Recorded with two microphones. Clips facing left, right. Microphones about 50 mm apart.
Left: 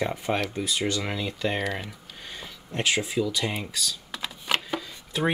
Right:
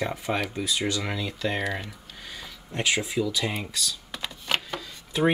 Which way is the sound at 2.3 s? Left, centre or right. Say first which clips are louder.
Left 1 dB; centre.